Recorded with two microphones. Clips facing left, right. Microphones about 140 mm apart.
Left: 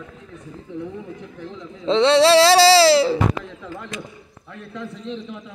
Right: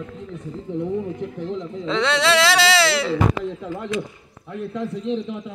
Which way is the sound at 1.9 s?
30° left (ahead or behind).